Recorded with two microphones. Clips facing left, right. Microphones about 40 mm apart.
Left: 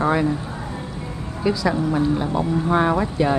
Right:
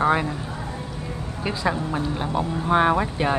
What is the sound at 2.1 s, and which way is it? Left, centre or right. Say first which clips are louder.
Speech: left 4 dB; centre.